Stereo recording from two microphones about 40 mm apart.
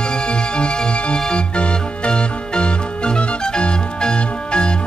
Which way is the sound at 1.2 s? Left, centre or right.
Left.